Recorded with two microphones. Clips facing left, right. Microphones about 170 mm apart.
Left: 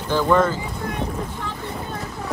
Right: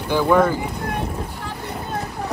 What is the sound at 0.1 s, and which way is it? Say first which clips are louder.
Speech: right 2 dB; 10° right (ahead or behind).